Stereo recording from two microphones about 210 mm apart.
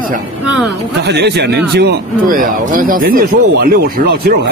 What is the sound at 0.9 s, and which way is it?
A man's voice, 55° right (ahead or behind).